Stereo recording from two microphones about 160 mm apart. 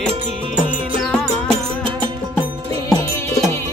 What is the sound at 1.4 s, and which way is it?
Music, 35° right (ahead or behind).